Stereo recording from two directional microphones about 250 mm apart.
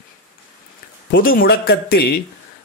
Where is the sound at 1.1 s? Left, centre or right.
Left.